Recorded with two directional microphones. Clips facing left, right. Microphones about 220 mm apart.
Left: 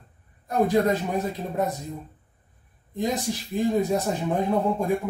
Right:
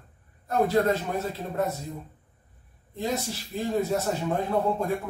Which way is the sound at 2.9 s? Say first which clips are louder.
Left 3 dB; 15° left (ahead or behind).